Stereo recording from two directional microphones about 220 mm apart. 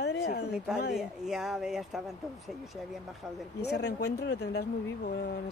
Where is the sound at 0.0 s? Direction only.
50° left (ahead or behind).